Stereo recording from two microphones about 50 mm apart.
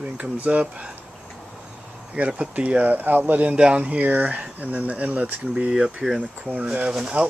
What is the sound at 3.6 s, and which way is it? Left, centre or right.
Speech, right.